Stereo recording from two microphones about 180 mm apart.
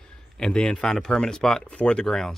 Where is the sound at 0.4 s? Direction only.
5° left (ahead or behind).